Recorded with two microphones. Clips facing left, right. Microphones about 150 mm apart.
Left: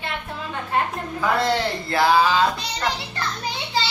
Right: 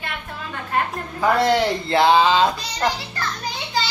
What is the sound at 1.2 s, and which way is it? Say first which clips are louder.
Speech: right 4 dB; 15° right (ahead or behind).